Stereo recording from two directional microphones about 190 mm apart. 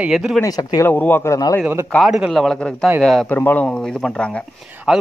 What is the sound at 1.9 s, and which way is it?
Speech, centre (ahead or behind).